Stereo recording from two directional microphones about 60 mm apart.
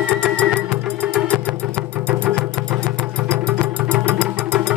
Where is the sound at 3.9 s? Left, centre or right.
Right.